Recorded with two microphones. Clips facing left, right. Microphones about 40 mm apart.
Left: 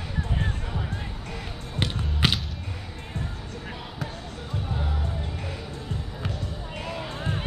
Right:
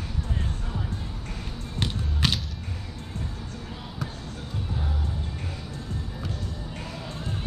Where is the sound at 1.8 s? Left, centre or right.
Centre.